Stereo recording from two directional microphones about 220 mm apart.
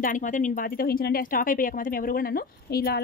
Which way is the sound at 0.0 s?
35° left (ahead or behind).